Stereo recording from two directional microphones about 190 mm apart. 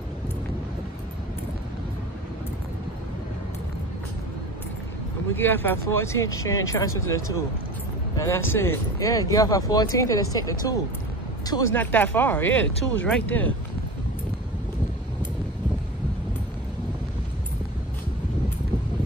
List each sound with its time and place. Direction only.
5.3 s speech: 10° left (ahead or behind)
11.7 s speech: 10° left (ahead or behind)